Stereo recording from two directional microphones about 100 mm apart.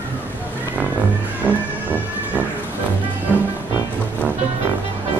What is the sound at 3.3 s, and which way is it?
Music, 15° right (ahead or behind).